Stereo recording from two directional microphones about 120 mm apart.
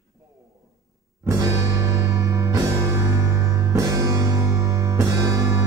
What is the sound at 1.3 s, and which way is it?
Music, 25° right (ahead or behind).